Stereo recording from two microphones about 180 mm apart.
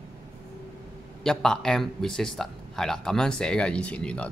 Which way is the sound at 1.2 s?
Centre (ahead or behind).